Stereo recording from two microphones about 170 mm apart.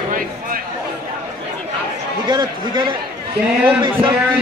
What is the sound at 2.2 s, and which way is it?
Speech, 25° right (ahead or behind).